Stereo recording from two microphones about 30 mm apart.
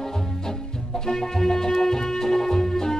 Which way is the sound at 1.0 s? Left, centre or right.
Centre.